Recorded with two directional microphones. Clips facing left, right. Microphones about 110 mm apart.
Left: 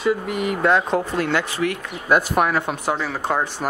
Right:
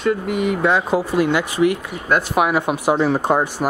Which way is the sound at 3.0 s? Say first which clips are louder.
Right 6 dB; 25° right (ahead or behind).